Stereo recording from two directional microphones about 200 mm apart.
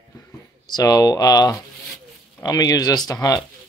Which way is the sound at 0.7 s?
20° left (ahead or behind).